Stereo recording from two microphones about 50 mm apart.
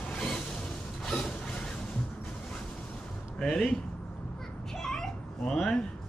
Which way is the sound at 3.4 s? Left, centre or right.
Centre.